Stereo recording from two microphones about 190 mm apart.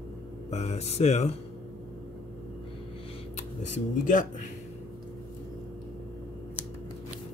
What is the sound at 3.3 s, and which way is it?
Speech, 40° left (ahead or behind).